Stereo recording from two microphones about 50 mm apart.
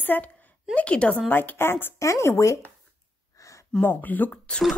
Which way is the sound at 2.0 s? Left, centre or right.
Left.